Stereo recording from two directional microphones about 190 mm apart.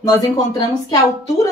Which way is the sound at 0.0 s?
20° left (ahead or behind).